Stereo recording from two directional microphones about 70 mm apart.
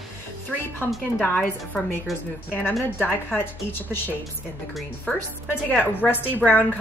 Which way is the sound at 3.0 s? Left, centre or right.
Left.